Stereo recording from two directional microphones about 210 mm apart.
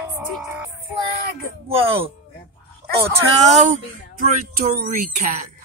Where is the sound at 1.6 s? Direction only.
25° right (ahead or behind).